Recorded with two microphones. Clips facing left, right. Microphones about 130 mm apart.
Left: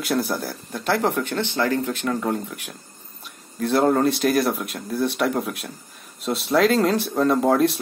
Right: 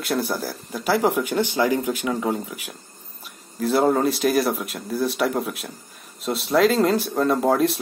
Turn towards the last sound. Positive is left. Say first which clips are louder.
# left 1 dB
turn(degrees=0)  # may be behind; listen again after turning